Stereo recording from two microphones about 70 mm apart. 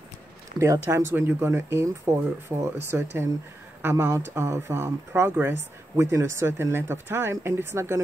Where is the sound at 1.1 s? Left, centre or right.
Right.